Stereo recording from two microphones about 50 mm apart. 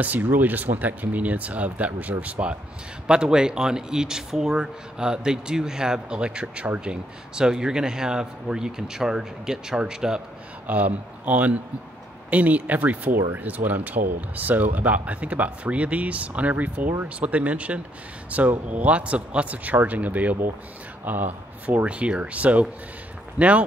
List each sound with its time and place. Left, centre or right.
0.0 s speech: right
3.1 s speech: centre
10.7 s speech: right
21.8 s speech: right